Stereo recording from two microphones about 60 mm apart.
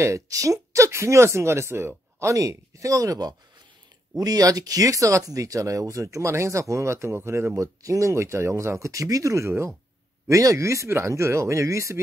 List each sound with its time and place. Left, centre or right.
0.0 s speech: right
4.2 s speech: right